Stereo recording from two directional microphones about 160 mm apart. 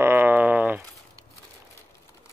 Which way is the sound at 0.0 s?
15° right (ahead or behind).